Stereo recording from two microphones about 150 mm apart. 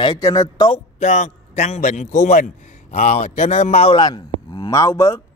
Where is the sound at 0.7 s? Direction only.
50° left (ahead or behind).